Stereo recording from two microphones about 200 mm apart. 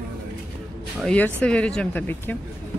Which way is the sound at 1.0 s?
5° left (ahead or behind).